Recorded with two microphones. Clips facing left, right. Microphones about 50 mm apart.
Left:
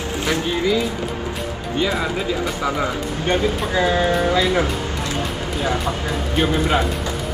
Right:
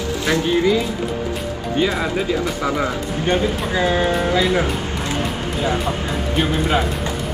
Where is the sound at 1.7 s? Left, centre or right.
Centre.